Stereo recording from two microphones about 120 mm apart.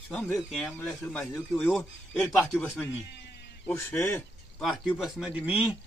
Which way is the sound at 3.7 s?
20° left (ahead or behind).